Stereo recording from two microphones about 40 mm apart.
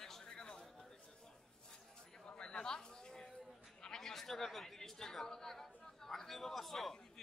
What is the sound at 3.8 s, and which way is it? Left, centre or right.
Chatter, centre.